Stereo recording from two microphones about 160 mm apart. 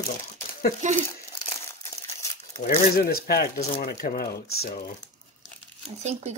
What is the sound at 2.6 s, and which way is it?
Speech, 70° left (ahead or behind).